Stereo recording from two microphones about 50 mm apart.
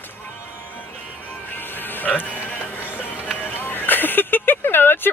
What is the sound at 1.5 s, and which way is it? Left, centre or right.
Music, left.